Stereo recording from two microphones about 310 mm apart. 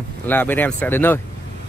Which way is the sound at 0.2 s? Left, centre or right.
Centre.